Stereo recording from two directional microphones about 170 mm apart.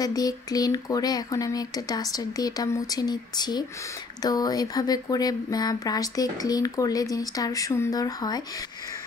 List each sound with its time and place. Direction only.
0.0 s speech: 20° left (ahead or behind)